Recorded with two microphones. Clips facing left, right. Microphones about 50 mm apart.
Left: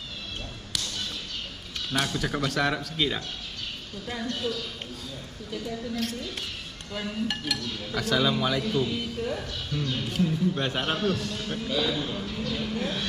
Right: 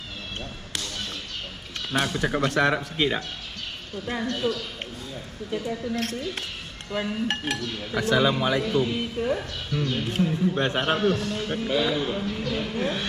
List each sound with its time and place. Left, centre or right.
1.9 s a man's voice: centre
6.9 s a man's voice: centre